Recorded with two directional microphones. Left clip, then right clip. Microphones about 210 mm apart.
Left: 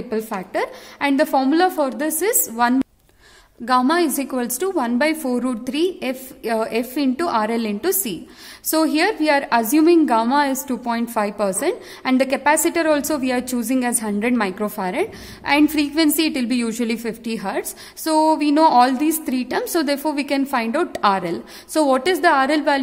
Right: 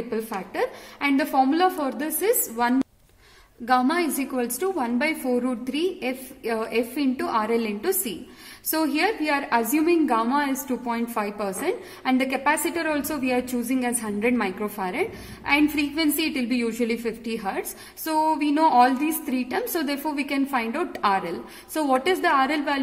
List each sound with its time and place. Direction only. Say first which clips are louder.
0.1 s a woman's voice: left 8 dB; 50° left (ahead or behind)